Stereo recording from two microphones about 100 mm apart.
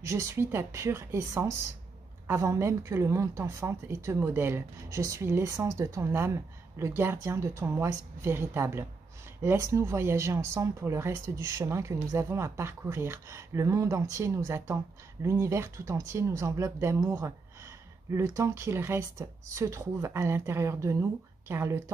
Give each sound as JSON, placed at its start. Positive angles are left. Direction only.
{"t": 0.0, "sound": "a woman's voice", "side_deg": -30}